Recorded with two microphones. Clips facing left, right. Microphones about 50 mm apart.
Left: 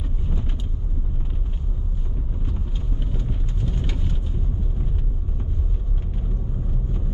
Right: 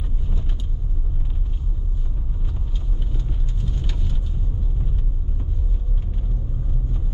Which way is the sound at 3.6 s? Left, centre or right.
Left.